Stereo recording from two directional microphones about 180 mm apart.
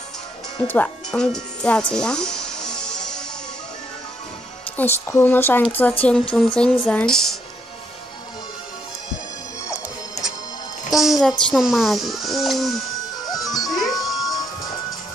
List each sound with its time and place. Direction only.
0.7 s music: 5° left (ahead or behind)
4.7 s a child's voice: 10° left (ahead or behind)
10.9 s a child's voice: centre (ahead or behind)
13.7 s music: centre (ahead or behind)